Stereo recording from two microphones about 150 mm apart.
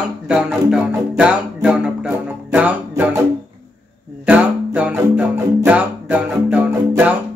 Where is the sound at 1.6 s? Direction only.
5° right (ahead or behind).